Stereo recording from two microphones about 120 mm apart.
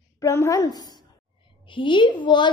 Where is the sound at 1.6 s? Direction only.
45° left (ahead or behind).